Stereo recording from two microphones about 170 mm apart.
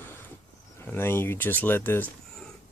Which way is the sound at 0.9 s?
15° left (ahead or behind).